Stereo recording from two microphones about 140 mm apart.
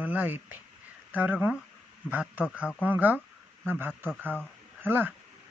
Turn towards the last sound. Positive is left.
turn(degrees=-15)  # may be behind; listen again after turning